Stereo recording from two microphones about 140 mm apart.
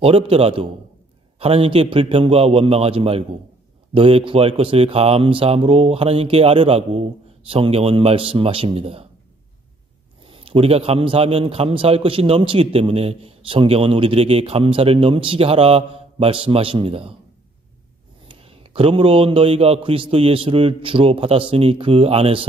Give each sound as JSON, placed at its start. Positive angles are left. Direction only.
{"t": 0.0, "sound": "a man's voice", "side_deg": -45}
{"t": 10.2, "sound": "a man's voice", "side_deg": -40}
{"t": 18.4, "sound": "a man's voice", "side_deg": -40}